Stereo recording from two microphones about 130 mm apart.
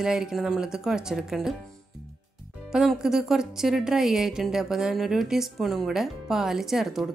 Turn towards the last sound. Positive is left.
turn(degrees=0)  # may be behind; listen again after turning